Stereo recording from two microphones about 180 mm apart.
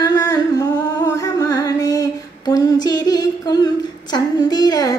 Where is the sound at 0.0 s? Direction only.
20° left (ahead or behind).